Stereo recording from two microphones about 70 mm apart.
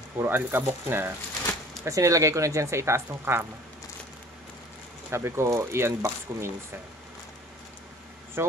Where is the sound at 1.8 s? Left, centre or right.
Right.